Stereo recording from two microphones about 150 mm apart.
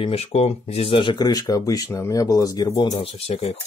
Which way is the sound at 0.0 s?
45° left (ahead or behind).